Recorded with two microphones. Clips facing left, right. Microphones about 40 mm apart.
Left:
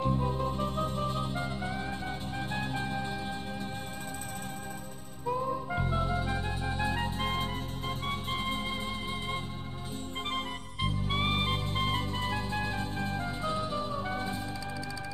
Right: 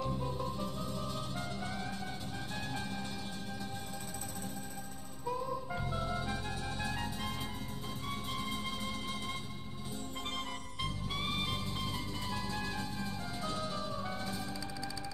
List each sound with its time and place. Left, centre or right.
0.0 s music: left
5.3 s music: left
11.1 s music: left